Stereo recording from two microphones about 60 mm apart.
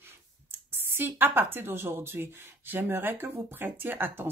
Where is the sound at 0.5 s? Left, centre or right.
Right.